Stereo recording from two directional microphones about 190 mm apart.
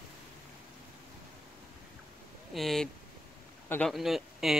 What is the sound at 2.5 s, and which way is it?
Speech, centre (ahead or behind).